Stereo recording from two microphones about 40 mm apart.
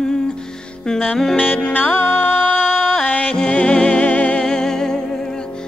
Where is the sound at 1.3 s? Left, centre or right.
Left.